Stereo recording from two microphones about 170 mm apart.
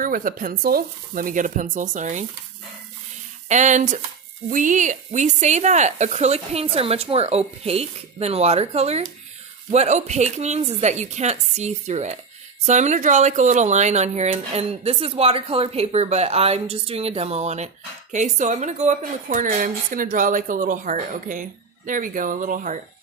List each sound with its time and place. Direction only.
0.0 s a woman's voice: 55° right (ahead or behind)
3.4 s a woman's voice: 45° right (ahead or behind)